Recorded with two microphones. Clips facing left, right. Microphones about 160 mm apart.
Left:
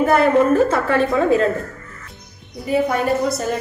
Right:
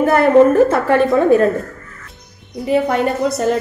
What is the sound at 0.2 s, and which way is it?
A woman's voice, 60° right (ahead or behind).